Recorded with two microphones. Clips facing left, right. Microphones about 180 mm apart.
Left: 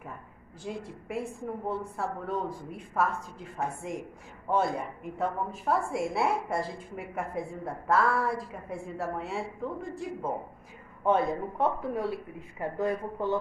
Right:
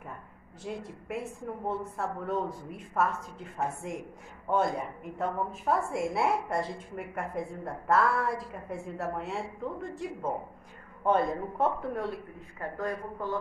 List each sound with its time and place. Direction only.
0.7 s a woman's voice: centre (ahead or behind)
12.5 s speech: 20° left (ahead or behind)